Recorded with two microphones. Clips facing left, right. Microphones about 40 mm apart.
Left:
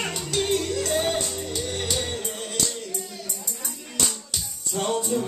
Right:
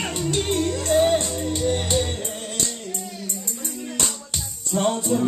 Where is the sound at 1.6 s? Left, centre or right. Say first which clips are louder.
Right 9 dB; centre.